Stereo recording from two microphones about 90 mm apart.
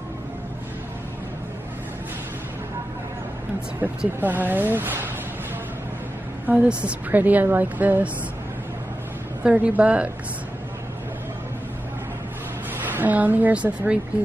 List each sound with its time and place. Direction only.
3.8 s a woman's voice: 20° right (ahead or behind)
6.4 s a woman's voice: 15° right (ahead or behind)
9.4 s a woman's voice: 10° right (ahead or behind)
12.7 s a woman's voice: 20° right (ahead or behind)